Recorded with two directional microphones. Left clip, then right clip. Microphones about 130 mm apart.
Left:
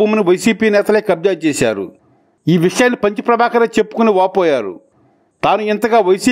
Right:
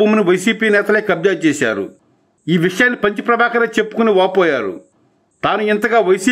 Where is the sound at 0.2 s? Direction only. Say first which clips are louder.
Left 1 dB; 40° left (ahead or behind).